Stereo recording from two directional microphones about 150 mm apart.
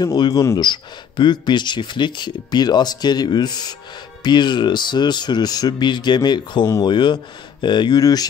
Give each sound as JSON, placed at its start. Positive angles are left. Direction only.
{"t": 0.0, "sound": "a man's voice", "side_deg": 25}